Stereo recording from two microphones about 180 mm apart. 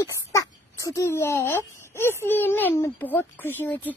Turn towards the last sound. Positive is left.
turn(degrees=10)  # may be behind; listen again after turning